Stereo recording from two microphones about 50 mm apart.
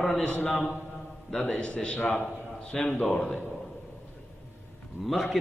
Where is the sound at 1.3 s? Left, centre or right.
Centre; by 2.3 s left.